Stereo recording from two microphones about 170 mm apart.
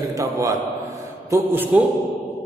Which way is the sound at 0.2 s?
20° right (ahead or behind).